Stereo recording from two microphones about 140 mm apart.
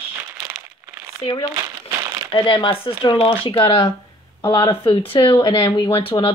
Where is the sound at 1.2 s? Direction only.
40° left (ahead or behind).